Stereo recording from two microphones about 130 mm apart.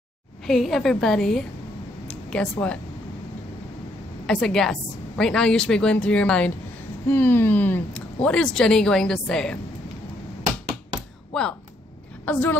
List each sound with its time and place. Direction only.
0.5 s a woman's voice: centre (ahead or behind)
2.0 s a sound: 5° left (ahead or behind)
4.3 s a woman's voice: 5° left (ahead or behind)
11.3 s a woman's voice: 5° left (ahead or behind)